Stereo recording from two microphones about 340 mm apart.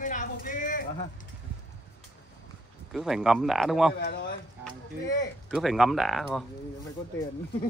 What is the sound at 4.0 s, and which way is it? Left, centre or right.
Speech, left.